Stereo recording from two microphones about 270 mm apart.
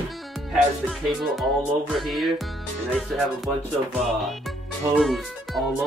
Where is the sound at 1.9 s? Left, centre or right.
Centre.